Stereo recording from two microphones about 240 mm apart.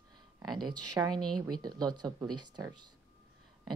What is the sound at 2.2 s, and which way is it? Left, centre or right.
Speech, right.